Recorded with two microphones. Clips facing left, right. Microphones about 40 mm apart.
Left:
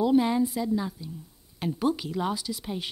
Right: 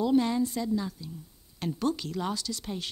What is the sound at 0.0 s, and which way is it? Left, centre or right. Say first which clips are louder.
A woman's voice: left 3 dB; centre.